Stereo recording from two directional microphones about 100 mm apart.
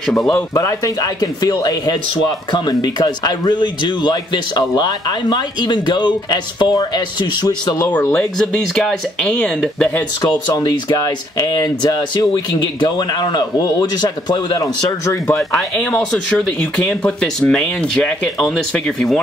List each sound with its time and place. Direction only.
0.0 s speech: 5° left (ahead or behind)
0.3 s a man's voice: 30° left (ahead or behind)
7.9 s speech: 25° left (ahead or behind)
8.4 s speech: 5° left (ahead or behind)
10.5 s speech: 40° left (ahead or behind)
15.3 s speech: 10° left (ahead or behind)